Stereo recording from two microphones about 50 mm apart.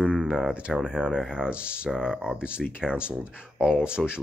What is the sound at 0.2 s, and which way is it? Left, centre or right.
Speech, centre.